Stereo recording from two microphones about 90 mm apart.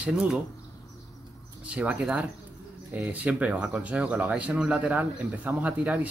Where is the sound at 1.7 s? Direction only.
15° right (ahead or behind).